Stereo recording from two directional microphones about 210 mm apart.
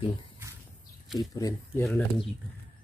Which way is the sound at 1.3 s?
15° left (ahead or behind).